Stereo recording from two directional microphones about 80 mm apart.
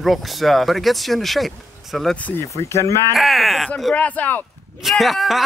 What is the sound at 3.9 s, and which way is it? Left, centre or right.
Speech, centre.